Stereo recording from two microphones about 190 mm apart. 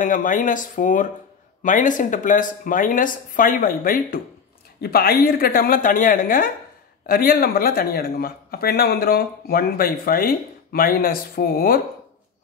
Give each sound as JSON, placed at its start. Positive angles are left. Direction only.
{"t": 0.0, "sound": "speech", "side_deg": 45}